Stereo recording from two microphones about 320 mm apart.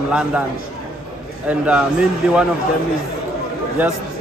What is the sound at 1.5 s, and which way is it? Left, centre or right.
Speech, centre.